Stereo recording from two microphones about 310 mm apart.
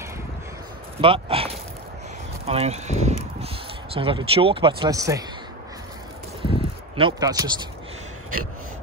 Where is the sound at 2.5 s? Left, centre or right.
Centre.